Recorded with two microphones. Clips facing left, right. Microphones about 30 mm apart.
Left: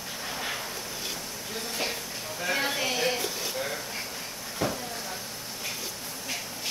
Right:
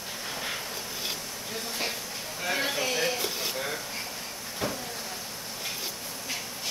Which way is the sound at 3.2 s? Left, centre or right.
Centre.